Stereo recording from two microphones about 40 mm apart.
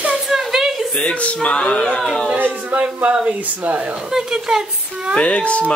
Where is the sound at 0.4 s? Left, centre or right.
Centre.